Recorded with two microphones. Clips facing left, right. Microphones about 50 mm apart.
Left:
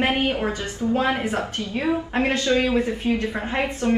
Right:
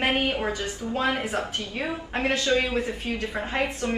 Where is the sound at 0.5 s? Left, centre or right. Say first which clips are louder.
Left 5 dB; left.